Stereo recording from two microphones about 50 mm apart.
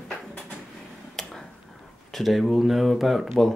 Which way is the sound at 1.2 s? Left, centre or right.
Centre.